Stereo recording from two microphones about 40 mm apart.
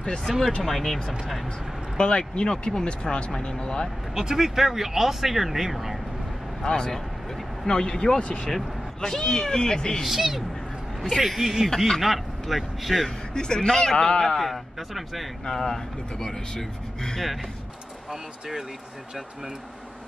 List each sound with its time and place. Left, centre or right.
0.0 s a man's voice: left; by 1.5 s centre
2.0 s speech: left
4.1 s speech: centre
6.6 s speech: centre
8.5 s speech: centre
10.0 s a man's voice: centre
13.3 s speech: centre
14.2 s speech: centre
14.5 s a man's voice: centre
15.4 s speech: centre